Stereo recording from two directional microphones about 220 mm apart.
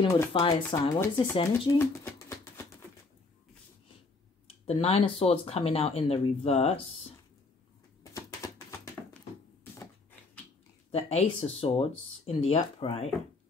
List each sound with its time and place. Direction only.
0.0 s speech: 20° left (ahead or behind)
1.8 s a sound: 10° left (ahead or behind)
4.6 s speech: 25° left (ahead or behind)
8.0 s typewriter: 15° left (ahead or behind)
10.9 s speech: 30° left (ahead or behind)